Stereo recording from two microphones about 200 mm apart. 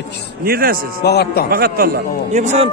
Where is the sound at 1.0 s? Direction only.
55° left (ahead or behind).